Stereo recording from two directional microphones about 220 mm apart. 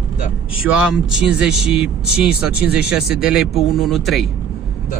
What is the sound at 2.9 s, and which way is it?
Speech, 5° right (ahead or behind).